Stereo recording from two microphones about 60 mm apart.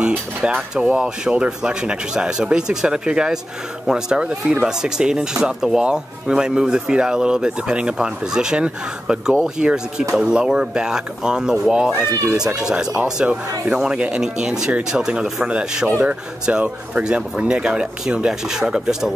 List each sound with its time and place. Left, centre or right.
0.0 s speech: centre